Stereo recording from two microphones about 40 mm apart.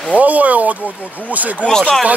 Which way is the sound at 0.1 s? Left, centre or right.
Right.